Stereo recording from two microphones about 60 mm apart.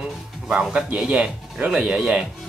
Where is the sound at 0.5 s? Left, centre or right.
Centre.